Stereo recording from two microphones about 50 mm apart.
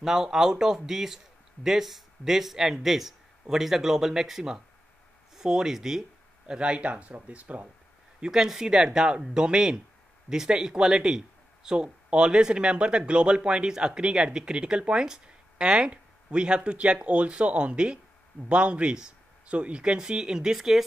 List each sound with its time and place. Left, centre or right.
0.0 s speech: centre; by 7.6 s right
8.2 s speech: centre